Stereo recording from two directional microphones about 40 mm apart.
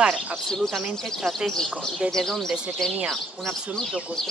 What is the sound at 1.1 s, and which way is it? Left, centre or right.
Speech, centre.